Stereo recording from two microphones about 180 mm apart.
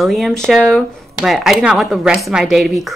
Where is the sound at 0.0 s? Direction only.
Centre (ahead or behind).